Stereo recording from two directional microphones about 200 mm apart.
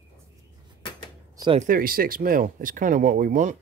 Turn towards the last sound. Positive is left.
turn(degrees=-40)  # may be behind; listen again after turning